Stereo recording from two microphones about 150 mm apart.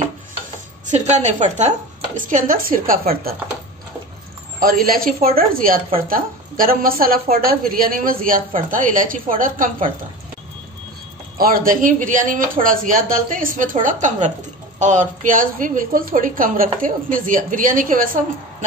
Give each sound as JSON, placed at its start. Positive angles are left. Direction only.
{"t": 0.8, "sound": "a woman's voice", "side_deg": -50}
{"t": 2.2, "sound": "a woman's voice", "side_deg": -65}
{"t": 4.6, "sound": "a woman's voice", "side_deg": -75}
{"t": 11.3, "sound": "a woman's voice", "side_deg": -75}